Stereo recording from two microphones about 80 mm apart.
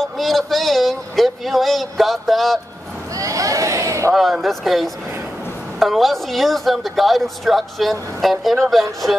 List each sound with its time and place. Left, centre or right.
0.0 s speech: centre
3.2 s a sound: right
4.1 s speech: centre